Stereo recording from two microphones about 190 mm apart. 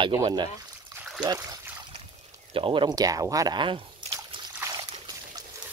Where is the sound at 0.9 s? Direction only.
5° right (ahead or behind).